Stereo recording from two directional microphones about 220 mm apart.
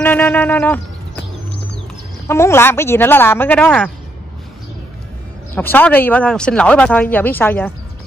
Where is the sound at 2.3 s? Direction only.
10° left (ahead or behind).